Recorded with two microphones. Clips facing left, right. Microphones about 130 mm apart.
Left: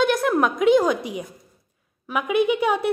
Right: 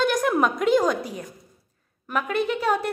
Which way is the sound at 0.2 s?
Centre (ahead or behind).